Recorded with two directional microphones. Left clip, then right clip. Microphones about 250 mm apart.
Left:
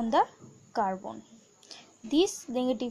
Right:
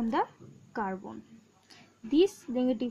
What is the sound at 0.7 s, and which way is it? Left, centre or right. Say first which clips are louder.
A woman's voice: left 5 dB; centre.